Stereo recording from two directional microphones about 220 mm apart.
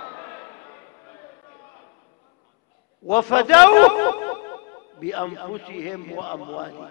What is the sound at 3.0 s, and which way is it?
A man's voice, 10° left (ahead or behind).